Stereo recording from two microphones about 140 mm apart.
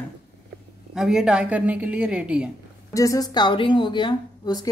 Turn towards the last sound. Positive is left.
turn(degrees=30)  # may be behind; listen again after turning